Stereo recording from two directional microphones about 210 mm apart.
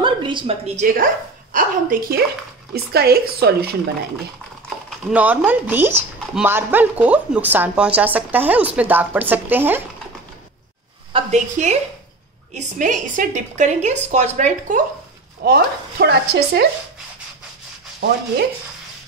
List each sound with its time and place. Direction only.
0.0 s speech: 20° right (ahead or behind)
0.9 s speech: 40° right (ahead or behind)
4.8 s speech: 5° right (ahead or behind)
11.1 s a woman's voice: 35° right (ahead or behind)
15.4 s speech: 50° right (ahead or behind)